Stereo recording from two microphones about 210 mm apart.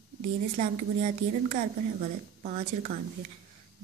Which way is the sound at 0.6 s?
35° right (ahead or behind).